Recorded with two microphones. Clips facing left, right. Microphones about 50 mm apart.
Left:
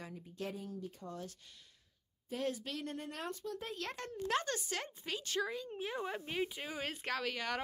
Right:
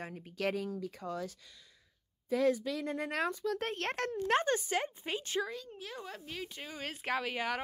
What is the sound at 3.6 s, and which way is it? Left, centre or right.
Speech, right.